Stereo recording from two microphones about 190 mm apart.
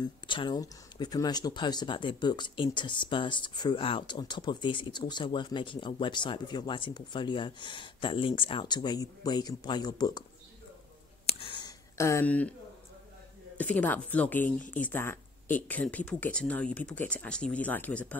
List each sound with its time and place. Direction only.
0.0 s speech: 25° left (ahead or behind)
11.2 s a sound: 30° left (ahead or behind); by 12.5 s 10° left (ahead or behind)
13.6 s speech: 10° left (ahead or behind)